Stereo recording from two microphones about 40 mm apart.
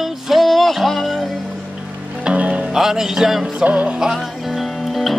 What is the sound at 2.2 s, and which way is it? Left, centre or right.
Music, right.